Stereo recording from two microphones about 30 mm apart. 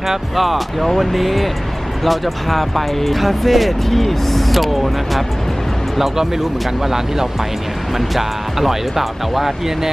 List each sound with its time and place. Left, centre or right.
0.4 s speech: centre
8.2 s speech: centre